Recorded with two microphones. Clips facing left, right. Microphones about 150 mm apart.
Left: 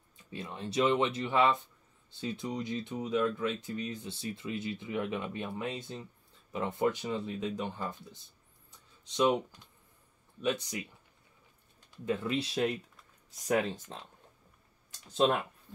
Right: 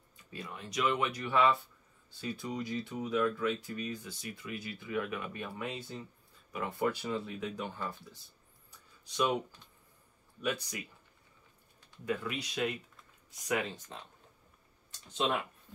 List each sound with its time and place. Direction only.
0.3 s speech: 25° left (ahead or behind)
10.4 s speech: 25° left (ahead or behind)
12.1 s speech: 25° left (ahead or behind)